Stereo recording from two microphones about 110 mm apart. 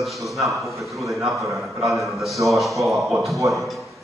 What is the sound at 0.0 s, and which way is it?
A man's voice, centre (ahead or behind).